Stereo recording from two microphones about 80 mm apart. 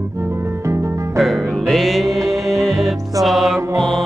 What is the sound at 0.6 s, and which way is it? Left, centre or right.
Music, right.